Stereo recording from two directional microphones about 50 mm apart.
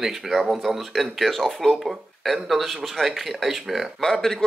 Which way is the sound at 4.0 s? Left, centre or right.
Centre.